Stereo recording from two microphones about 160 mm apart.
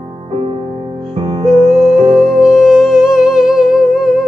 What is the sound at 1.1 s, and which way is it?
Music, 40° right (ahead or behind).